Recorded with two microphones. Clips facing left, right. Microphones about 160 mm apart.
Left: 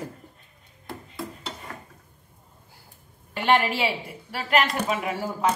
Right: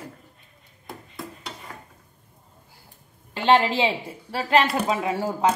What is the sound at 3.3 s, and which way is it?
A woman's voice, 25° right (ahead or behind).